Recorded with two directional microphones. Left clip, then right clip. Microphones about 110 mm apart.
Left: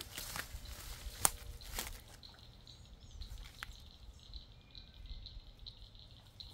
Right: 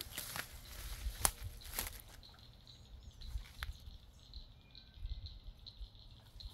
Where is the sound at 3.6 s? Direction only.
35° right (ahead or behind).